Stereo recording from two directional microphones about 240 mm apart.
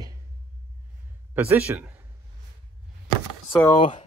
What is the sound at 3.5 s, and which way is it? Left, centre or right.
Speech, centre.